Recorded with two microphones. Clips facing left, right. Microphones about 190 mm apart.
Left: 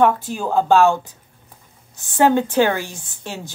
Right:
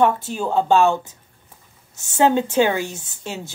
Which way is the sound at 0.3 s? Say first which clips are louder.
Left 1 dB; 10° left (ahead or behind).